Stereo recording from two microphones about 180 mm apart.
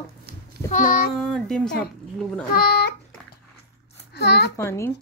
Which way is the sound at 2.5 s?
60° left (ahead or behind).